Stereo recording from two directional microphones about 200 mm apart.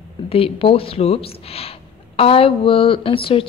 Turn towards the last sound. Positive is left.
turn(degrees=25)  # may be behind; listen again after turning